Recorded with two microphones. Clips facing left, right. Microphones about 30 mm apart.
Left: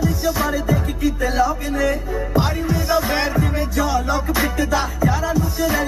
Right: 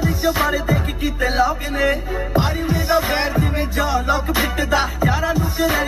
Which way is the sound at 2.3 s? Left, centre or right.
Centre.